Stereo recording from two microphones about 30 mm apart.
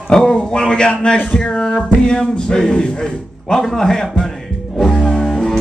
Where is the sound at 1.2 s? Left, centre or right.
Left.